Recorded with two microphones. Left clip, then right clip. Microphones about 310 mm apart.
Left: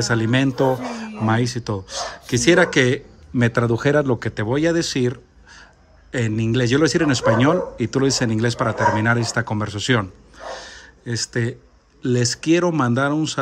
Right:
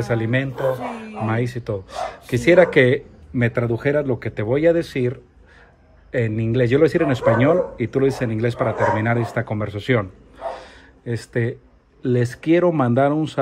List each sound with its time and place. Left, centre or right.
0.0 s a man's voice: centre